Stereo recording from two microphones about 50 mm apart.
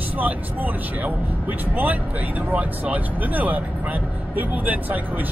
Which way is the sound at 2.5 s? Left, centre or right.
Right.